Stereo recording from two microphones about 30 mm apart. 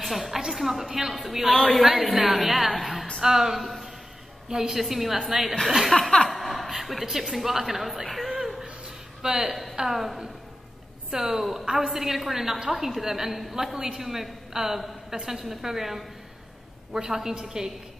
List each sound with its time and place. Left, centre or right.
0.0 s a woman's voice: centre
1.5 s chuckle: centre
1.8 s a woman's voice: centre
3.2 s a woman's voice: centre
3.5 s speech: centre
4.5 s a woman's voice: centre
5.9 s chuckle: centre
6.2 s a woman's voice: centre
8.4 s a sound: centre
9.2 s speech: right
9.8 s a woman's voice: centre
11.1 s a woman's voice: centre